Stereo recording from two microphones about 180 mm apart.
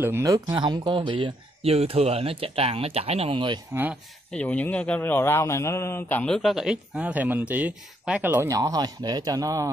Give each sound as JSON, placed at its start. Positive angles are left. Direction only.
{"t": 0.0, "sound": "speech", "side_deg": -15}
{"t": 3.7, "sound": "speech", "side_deg": -10}
{"t": 4.3, "sound": "speech", "side_deg": 5}